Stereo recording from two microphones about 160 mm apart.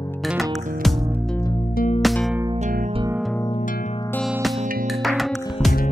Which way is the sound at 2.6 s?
55° right (ahead or behind).